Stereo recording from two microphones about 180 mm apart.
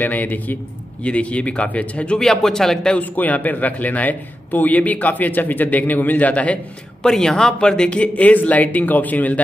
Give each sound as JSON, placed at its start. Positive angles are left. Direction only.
{"t": 0.0, "sound": "speech", "side_deg": 10}